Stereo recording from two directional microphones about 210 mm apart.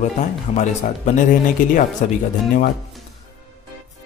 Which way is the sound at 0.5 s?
35° left (ahead or behind).